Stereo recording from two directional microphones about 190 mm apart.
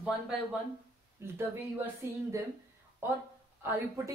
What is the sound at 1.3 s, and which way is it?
Speech, 10° right (ahead or behind).